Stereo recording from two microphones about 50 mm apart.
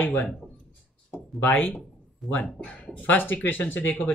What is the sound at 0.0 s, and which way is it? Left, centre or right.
Speech, left.